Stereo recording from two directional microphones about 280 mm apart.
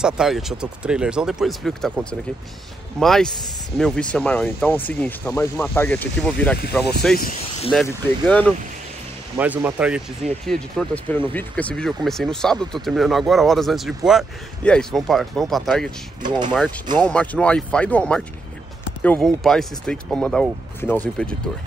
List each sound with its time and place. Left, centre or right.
0.0 s a man's voice: centre
7.2 s speech: left
7.7 s a man's voice: centre
9.4 s a man's voice: centre
17.0 s a man's voice: centre